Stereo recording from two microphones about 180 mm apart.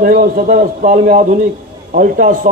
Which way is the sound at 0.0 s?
55° right (ahead or behind).